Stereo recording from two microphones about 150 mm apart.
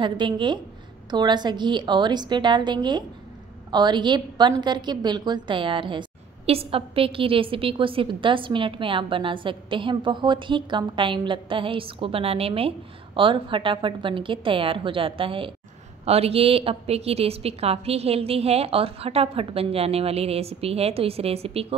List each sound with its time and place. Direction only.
0.0 s a woman's voice: 30° right (ahead or behind)